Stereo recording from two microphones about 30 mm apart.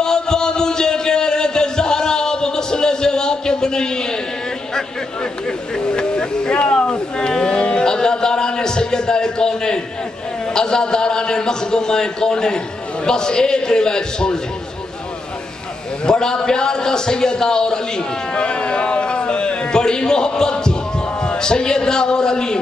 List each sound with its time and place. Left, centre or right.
0.0 s a sound: left
5.8 s a man's voice: left
6.5 s speech: left
7.2 s a man's voice: left
16.1 s a man's voice: left
18.4 s a sound: left
21.2 s music: left